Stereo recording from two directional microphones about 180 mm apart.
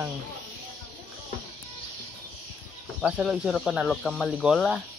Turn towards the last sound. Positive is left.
turn(degrees=0)  # may be behind; listen again after turning